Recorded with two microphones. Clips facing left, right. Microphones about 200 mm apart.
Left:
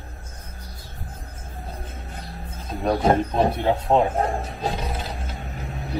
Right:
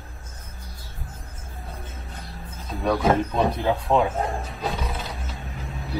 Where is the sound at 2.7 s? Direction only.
25° left (ahead or behind).